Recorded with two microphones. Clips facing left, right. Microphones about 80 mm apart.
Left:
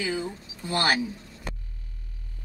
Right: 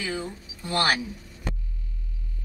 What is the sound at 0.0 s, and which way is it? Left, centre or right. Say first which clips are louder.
Speech: left 2 dB; centre.